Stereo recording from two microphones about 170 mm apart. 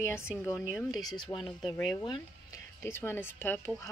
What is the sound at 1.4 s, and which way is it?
Speech, centre (ahead or behind).